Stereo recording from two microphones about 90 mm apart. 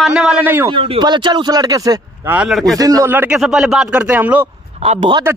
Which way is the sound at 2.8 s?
40° right (ahead or behind).